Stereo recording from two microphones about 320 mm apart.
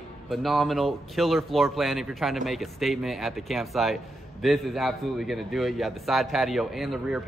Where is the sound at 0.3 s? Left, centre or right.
Centre.